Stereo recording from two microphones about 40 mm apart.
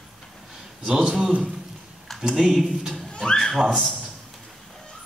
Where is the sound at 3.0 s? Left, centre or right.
Centre.